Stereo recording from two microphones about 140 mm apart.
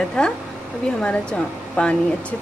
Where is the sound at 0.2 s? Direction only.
5° left (ahead or behind).